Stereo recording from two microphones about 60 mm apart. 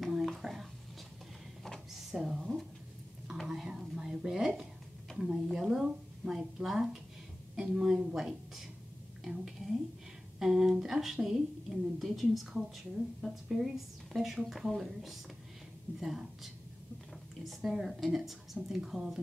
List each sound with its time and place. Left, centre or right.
0.0 s a sound: centre
1.6 s drawer open or close: centre
3.4 s whispering: centre
5.1 s a sound: centre
14.1 s a woman's voice: centre
17.6 s a woman's voice: centre